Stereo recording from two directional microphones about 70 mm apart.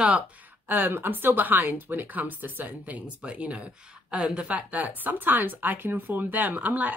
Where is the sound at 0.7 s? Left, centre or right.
Right.